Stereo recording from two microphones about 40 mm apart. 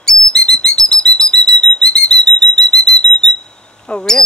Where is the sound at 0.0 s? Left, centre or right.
Centre.